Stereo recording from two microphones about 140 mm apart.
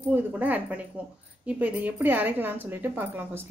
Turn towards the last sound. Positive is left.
turn(degrees=-15)  # may be behind; listen again after turning